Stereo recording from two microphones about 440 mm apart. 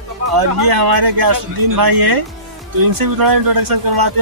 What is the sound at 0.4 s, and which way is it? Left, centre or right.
Speech, right.